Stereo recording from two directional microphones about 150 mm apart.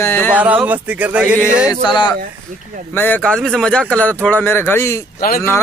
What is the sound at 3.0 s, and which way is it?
Speech, 10° left (ahead or behind).